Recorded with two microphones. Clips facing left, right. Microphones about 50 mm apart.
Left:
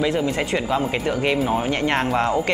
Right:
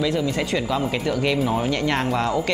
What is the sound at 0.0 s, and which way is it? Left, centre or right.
Speech, left.